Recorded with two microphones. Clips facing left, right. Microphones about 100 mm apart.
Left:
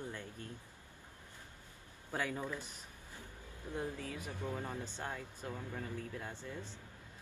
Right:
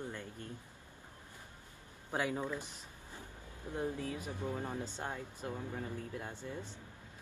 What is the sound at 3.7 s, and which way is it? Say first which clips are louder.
Speech: right 3 dB; 20° right (ahead or behind).